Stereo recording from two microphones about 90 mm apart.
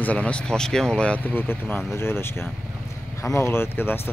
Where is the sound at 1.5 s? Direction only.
25° left (ahead or behind).